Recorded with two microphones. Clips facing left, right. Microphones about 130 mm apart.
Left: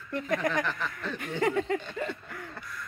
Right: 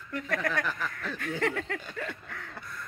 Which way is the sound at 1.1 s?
10° left (ahead or behind).